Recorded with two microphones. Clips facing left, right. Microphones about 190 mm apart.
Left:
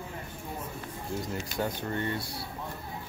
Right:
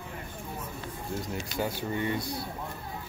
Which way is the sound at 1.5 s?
5° right (ahead or behind).